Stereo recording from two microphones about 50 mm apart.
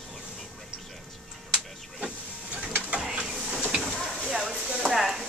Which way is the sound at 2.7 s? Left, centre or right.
Right.